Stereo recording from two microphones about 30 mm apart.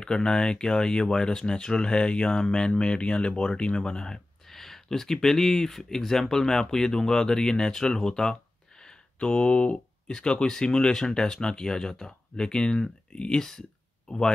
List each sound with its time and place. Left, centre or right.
0.0 s speech: left
4.5 s speech: centre; by 8.9 s left
9.2 s speech: left
13.1 s speech: left
13.4 s speech: centre